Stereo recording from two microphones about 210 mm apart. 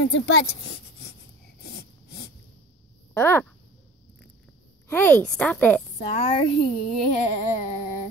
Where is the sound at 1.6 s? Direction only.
50° left (ahead or behind).